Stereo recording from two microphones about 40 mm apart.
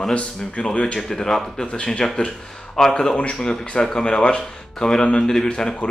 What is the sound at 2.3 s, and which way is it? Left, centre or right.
Speech, centre.